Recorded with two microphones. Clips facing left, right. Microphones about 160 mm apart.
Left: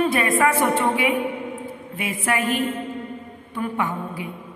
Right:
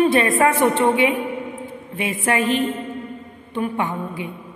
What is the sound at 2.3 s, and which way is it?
A woman's voice, 25° right (ahead or behind).